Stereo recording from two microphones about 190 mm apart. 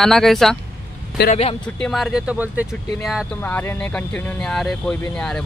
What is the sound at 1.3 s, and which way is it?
Speech, 30° left (ahead or behind).